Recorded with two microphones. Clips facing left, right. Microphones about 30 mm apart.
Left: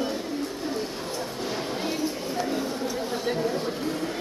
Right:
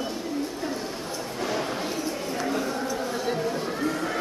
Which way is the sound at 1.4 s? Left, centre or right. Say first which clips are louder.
Right 3 dB; centre.